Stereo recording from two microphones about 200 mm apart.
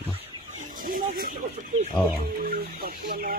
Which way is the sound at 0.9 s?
45° right (ahead or behind).